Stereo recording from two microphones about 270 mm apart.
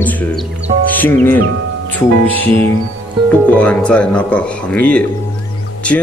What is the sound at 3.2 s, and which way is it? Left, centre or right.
Speech, centre.